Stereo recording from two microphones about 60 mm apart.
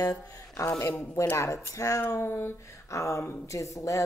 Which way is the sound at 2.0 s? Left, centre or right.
Left.